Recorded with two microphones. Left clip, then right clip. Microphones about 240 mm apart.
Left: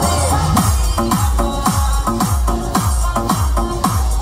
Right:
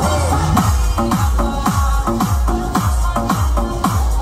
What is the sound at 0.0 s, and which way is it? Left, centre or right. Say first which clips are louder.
Music: left 1 dB; left.